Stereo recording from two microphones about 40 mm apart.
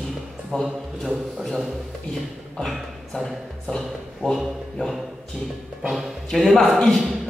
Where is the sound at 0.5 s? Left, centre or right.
Centre.